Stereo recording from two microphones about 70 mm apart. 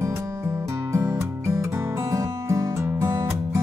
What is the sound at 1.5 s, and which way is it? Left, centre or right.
Music, right.